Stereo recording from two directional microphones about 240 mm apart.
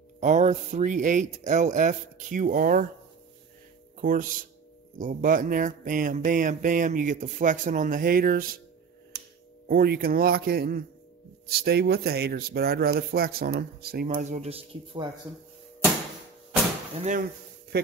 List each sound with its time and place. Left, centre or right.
0.2 s speech: right
4.0 s speech: right
9.7 s speech: right
17.7 s speech: right